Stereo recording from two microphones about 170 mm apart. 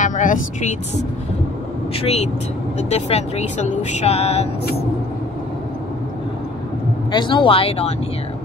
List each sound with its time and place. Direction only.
0.0 s speech: 50° left (ahead or behind)
2.0 s speech: 35° left (ahead or behind)
7.1 s speech: 30° left (ahead or behind)